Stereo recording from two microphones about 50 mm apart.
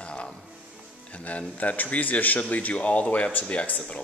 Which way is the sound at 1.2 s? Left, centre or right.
Left.